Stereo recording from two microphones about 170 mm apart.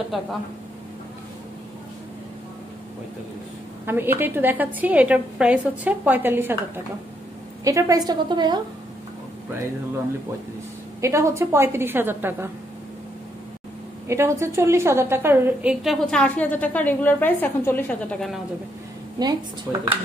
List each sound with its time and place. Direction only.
0.1 s a woman's voice: centre (ahead or behind)
3.8 s a woman's voice: 15° right (ahead or behind)
7.6 s a woman's voice: 20° right (ahead or behind)
11.0 s a woman's voice: 15° right (ahead or behind)
14.0 s a woman's voice: 15° right (ahead or behind); by 18.4 s 5° left (ahead or behind)
19.2 s a woman's voice: 25° right (ahead or behind)
19.7 s a woman's voice: 5° right (ahead or behind)